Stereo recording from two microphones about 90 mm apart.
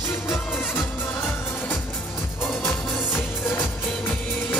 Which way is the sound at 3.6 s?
20° left (ahead or behind).